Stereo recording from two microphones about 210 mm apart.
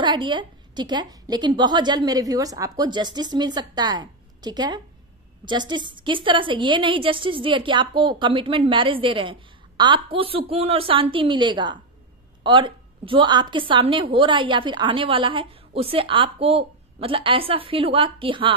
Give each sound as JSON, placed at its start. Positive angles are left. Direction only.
{"t": 0.0, "sound": "a woman's voice", "side_deg": -20}